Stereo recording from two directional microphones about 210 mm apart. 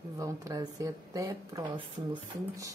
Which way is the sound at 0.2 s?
15° right (ahead or behind).